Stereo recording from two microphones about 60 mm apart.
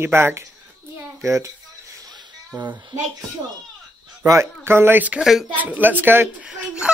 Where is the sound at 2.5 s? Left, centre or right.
Right.